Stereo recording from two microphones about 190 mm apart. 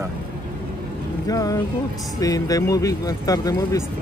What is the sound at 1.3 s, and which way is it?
Speech, 20° left (ahead or behind).